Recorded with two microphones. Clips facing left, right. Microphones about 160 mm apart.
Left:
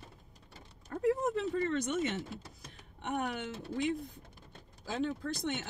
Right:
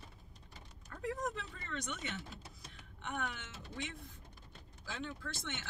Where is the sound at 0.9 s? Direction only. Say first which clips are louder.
Left 9 dB; 40° left (ahead or behind).